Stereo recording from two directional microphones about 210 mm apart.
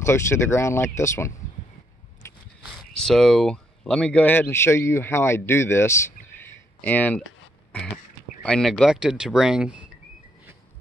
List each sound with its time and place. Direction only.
0.0 s speech: 10° left (ahead or behind)
2.2 s a sound: 15° left (ahead or behind)
2.6 s speech: centre (ahead or behind)
8.4 s speech: 5° left (ahead or behind)